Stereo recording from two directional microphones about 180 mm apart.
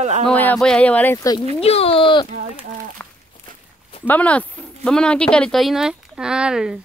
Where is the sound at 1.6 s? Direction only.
35° left (ahead or behind).